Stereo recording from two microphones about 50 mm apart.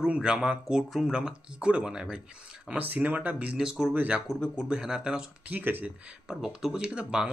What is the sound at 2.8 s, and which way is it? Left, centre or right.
Speech, right.